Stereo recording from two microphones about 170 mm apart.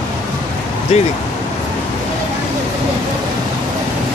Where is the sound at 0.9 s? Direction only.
40° left (ahead or behind).